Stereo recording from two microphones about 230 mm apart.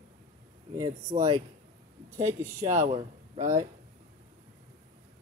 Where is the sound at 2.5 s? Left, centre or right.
Right.